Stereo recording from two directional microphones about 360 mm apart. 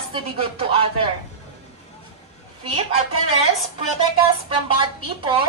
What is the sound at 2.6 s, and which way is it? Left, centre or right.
Speech, centre.